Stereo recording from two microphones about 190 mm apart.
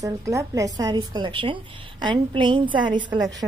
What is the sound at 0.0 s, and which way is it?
A woman's voice, 15° right (ahead or behind).